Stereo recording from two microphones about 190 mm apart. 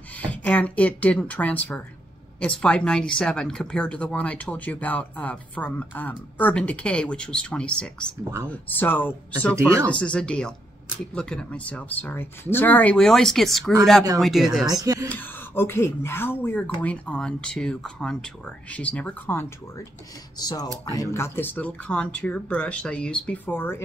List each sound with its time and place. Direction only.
0.2 s speech: 5° left (ahead or behind)
8.2 s speech: 15° right (ahead or behind)
8.5 s speech: 10° left (ahead or behind)
14.7 s speech: 15° right (ahead or behind)
15.0 s speech: 10° left (ahead or behind)
20.3 s speech: 20° left (ahead or behind)